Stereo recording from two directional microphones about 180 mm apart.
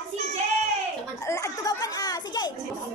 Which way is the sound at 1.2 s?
20° left (ahead or behind).